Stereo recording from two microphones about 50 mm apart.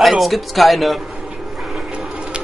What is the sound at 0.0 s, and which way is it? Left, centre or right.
Speech, centre.